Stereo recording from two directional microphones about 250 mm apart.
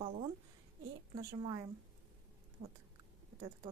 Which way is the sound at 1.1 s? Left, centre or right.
Centre.